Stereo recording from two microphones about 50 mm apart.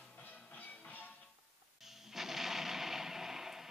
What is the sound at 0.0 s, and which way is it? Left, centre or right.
Music, left.